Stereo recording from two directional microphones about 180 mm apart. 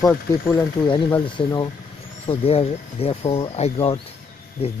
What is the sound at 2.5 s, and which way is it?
Speech, 30° left (ahead or behind).